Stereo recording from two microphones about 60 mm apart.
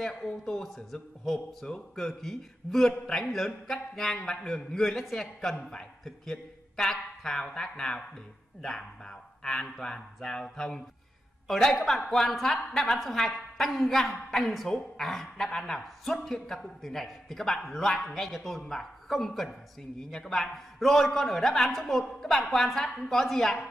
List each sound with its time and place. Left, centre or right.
0.0 s a man's voice: centre